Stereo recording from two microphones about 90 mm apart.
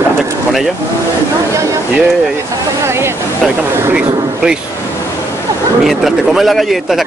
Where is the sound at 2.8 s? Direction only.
30° right (ahead or behind).